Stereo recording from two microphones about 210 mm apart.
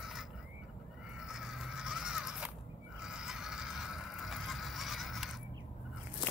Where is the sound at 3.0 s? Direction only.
5° right (ahead or behind).